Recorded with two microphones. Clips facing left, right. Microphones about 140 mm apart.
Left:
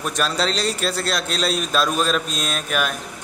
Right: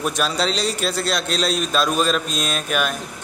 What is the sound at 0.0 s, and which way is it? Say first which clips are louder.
A man's voice: right 1 dB; centre (ahead or behind).